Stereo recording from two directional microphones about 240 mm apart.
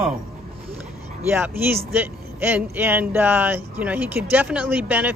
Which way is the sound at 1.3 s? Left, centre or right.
Centre.